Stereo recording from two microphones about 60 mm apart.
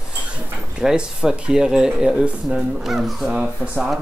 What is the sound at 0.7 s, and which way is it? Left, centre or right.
Speech, centre.